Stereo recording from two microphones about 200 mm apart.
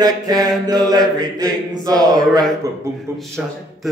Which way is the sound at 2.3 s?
Centre (ahead or behind).